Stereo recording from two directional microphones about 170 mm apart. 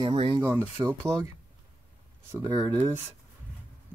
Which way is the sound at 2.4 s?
20° right (ahead or behind).